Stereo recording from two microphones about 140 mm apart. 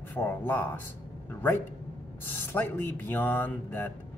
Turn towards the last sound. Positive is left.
turn(degrees=15)  # may be behind; listen again after turning